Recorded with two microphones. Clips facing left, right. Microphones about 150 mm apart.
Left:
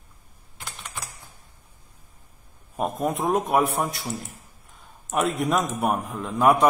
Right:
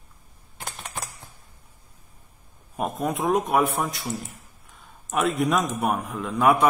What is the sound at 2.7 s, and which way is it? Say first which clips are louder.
A man's voice: left 1 dB; centre (ahead or behind).